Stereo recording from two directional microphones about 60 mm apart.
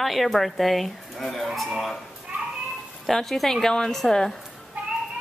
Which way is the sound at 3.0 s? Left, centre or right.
Centre.